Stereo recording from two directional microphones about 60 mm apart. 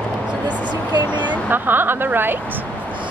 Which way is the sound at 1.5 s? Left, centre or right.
Right.